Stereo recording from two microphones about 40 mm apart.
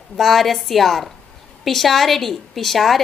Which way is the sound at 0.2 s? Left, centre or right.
Centre.